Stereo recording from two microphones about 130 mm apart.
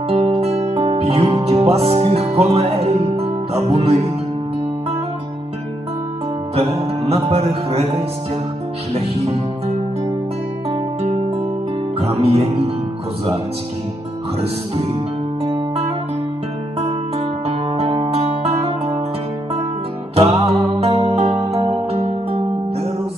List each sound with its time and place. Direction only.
0.1 s music: 50° right (ahead or behind)
6.5 s music: 50° right (ahead or behind)
12.0 s music: 50° right (ahead or behind)
17.7 s music: 50° right (ahead or behind)
20.2 s music: 50° right (ahead or behind)